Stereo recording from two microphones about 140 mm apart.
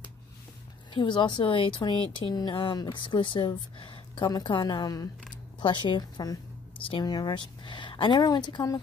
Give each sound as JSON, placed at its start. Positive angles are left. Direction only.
{"t": 0.9, "sound": "speech", "side_deg": 35}